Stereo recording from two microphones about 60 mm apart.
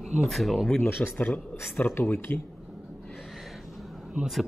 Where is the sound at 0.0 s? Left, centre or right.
Centre.